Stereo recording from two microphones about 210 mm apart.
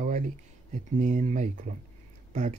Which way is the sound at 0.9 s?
35° right (ahead or behind).